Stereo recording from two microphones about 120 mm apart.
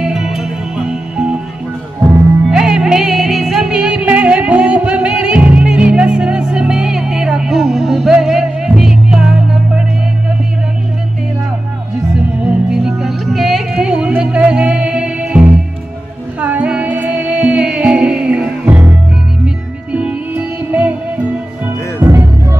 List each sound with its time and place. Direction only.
0.0 s music: 5° right (ahead or behind)
2.5 s music: 5° right (ahead or behind)
12.4 s music: 5° right (ahead or behind)
21.6 s music: 20° right (ahead or behind)